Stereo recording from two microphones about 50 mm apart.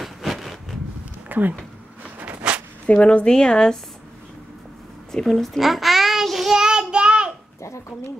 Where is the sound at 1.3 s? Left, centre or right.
Right.